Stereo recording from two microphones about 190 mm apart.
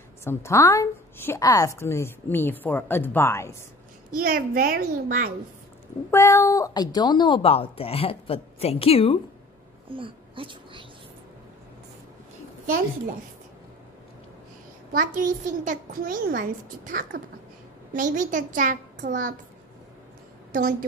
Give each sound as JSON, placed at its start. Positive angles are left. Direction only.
{"t": 0.2, "sound": "a woman's voice", "side_deg": 15}
{"t": 4.1, "sound": "a child's voice", "side_deg": -50}
{"t": 6.0, "sound": "speech", "side_deg": 15}
{"t": 9.8, "sound": "speech", "side_deg": -25}
{"t": 14.9, "sound": "a child's voice", "side_deg": -45}